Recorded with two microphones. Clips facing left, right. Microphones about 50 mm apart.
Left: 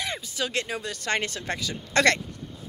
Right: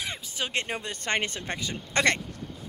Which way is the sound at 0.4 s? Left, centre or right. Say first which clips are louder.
Left 1 dB; right.